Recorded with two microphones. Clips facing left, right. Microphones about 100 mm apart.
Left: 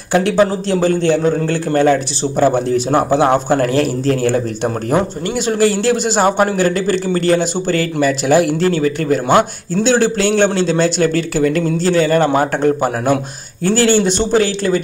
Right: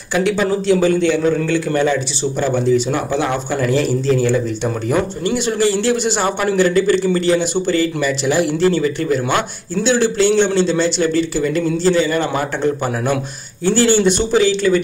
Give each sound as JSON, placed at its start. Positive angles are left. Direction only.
{"t": 0.4, "sound": "a man's voice", "side_deg": 40}
{"t": 5.6, "sound": "speech", "side_deg": 45}